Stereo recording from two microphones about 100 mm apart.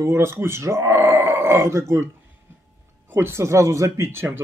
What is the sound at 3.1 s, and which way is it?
Speech, 25° right (ahead or behind).